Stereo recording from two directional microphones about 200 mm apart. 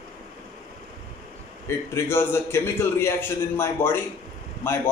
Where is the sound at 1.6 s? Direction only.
15° left (ahead or behind).